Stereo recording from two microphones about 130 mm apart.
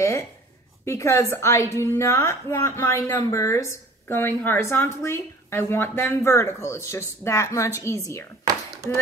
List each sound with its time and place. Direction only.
0.8 s a woman's voice: 20° left (ahead or behind)